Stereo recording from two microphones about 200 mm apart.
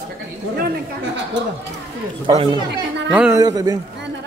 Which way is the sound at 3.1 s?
5° right (ahead or behind).